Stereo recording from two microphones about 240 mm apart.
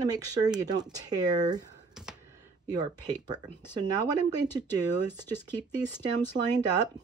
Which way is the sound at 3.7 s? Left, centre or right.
Centre.